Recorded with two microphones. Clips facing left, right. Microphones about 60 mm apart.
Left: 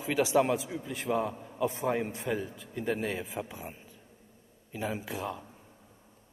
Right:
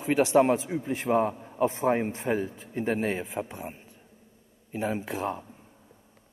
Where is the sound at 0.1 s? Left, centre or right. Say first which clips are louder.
Right 5 dB; right.